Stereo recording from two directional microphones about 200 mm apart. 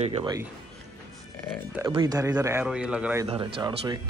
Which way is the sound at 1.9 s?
20° right (ahead or behind).